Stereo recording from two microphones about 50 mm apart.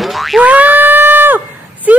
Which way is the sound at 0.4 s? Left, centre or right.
Right.